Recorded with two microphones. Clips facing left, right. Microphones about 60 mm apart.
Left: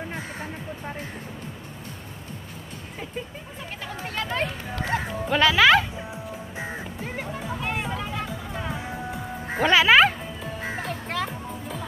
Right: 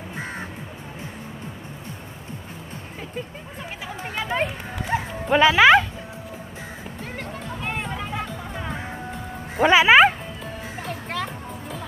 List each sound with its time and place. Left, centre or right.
3.9 s speech: centre
7.0 s music: centre
9.6 s speech: centre
10.8 s music: centre